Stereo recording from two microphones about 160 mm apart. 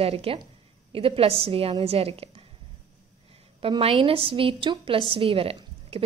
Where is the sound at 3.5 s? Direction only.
35° right (ahead or behind).